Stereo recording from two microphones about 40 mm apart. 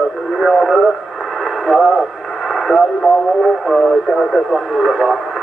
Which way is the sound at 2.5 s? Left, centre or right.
Centre.